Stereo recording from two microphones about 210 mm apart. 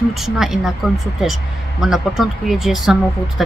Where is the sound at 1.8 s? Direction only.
Centre (ahead or behind).